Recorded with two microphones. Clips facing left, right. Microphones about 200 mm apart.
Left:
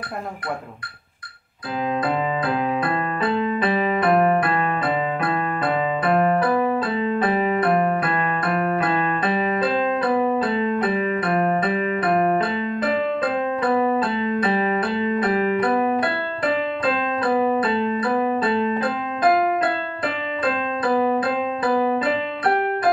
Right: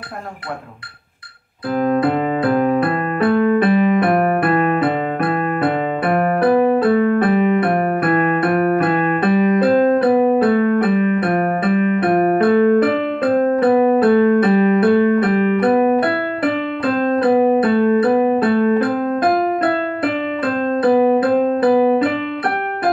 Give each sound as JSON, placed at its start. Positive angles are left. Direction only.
{"t": 2.0, "sound": "music", "side_deg": -55}
{"t": 6.6, "sound": "piano", "side_deg": -55}
{"t": 8.0, "sound": "music", "side_deg": -55}
{"t": 16.8, "sound": "keyboard", "side_deg": -55}
{"t": 20.4, "sound": "piano", "side_deg": -55}